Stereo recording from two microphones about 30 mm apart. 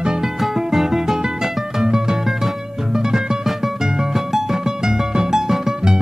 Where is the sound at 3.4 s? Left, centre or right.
Centre.